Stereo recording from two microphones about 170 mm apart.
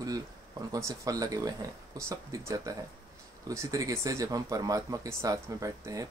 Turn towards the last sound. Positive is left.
turn(degrees=-20)  # may be behind; listen again after turning